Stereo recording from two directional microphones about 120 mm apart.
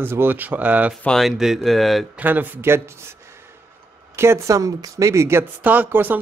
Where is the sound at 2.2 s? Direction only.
15° right (ahead or behind).